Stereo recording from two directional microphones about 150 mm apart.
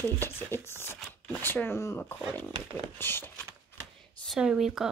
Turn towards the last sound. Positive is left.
turn(degrees=-5)  # may be behind; listen again after turning